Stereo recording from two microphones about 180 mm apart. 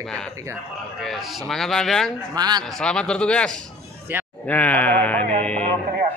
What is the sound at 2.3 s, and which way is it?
Speech, 20° right (ahead or behind).